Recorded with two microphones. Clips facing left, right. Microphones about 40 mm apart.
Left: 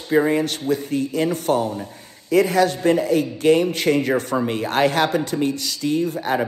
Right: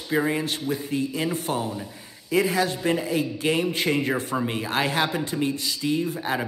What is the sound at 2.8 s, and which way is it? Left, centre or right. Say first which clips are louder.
Speech: left 6 dB; right.